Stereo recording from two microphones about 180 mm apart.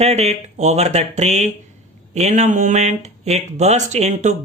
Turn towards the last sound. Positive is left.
turn(degrees=-40)  # may be behind; listen again after turning